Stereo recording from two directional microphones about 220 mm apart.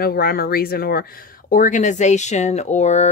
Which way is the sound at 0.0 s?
45° left (ahead or behind).